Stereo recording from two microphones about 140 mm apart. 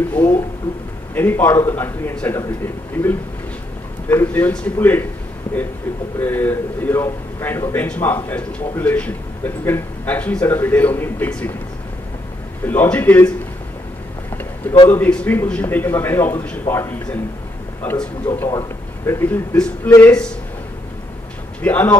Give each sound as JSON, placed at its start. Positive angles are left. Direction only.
{"t": 0.1, "sound": "a sound", "side_deg": 10}
{"t": 1.1, "sound": "a man's voice", "side_deg": 15}
{"t": 6.1, "sound": "a man's voice", "side_deg": 15}
{"t": 12.6, "sound": "a man's voice", "side_deg": 15}
{"t": 14.3, "sound": "a sound", "side_deg": 15}
{"t": 14.9, "sound": "a man's voice", "side_deg": 10}
{"t": 21.6, "sound": "a man's voice", "side_deg": 10}